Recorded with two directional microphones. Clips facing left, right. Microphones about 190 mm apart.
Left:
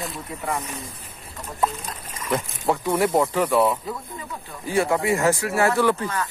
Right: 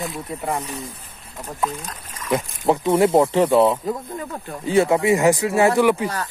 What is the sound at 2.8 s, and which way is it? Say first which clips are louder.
Speech: right 5 dB; 25° right (ahead or behind).